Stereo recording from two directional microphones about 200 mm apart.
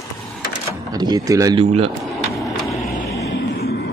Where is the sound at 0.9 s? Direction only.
20° right (ahead or behind).